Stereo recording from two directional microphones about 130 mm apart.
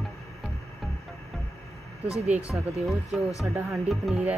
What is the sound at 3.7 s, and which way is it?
Speech, centre (ahead or behind).